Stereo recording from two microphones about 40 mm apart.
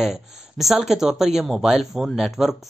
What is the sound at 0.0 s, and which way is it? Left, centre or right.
Speech, centre.